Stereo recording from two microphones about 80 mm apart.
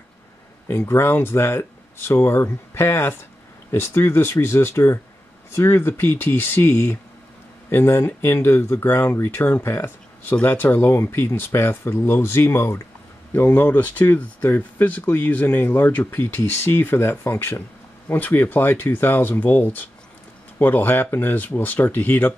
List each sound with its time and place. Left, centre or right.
0.7 s speech: left